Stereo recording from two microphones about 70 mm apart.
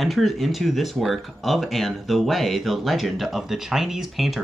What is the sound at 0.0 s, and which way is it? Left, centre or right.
Speech, centre.